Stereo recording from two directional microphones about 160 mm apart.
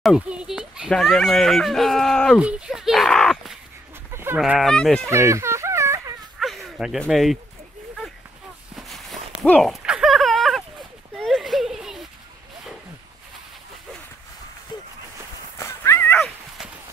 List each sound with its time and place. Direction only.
0.0 s speech: 5° right (ahead or behind)
2.4 s a sound: 5° right (ahead or behind)
4.1 s chicken: 15° right (ahead or behind)
4.4 s speech: centre (ahead or behind)
5.1 s a sound: 15° right (ahead or behind)
6.4 s dog: centre (ahead or behind)
8.7 s walk: centre (ahead or behind)
9.4 s a sound: centre (ahead or behind)
15.6 s dog: 15° left (ahead or behind)
16.2 s dog: centre (ahead or behind)